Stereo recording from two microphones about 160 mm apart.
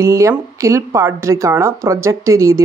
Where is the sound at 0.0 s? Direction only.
20° right (ahead or behind).